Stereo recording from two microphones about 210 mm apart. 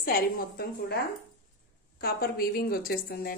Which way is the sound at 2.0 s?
45° left (ahead or behind).